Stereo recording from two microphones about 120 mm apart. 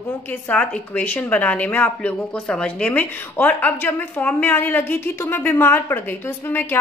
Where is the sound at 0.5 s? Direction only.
10° left (ahead or behind).